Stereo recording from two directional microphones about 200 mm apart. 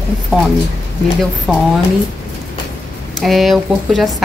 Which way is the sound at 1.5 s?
Centre (ahead or behind).